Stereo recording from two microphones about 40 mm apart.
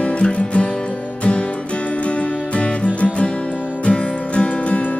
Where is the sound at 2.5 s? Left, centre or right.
Left.